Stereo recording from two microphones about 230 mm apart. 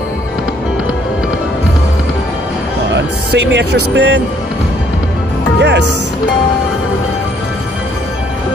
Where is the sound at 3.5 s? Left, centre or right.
Right.